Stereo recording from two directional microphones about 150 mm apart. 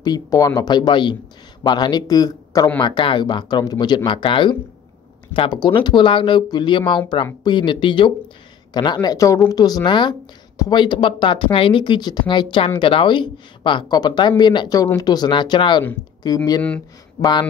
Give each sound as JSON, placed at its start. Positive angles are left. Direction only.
{"t": 0.0, "sound": "speech", "side_deg": 25}
{"t": 17.2, "sound": "speech", "side_deg": 30}